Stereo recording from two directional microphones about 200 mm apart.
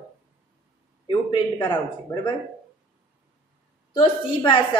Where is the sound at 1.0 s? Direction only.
25° left (ahead or behind).